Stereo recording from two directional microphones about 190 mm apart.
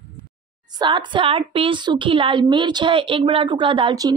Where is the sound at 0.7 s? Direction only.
25° right (ahead or behind).